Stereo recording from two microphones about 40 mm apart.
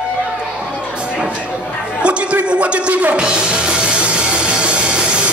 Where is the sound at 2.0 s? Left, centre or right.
Right.